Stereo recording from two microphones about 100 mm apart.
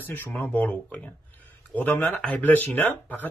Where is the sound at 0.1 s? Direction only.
20° left (ahead or behind).